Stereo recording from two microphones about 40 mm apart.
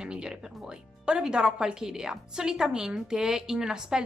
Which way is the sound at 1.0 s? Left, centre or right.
Right.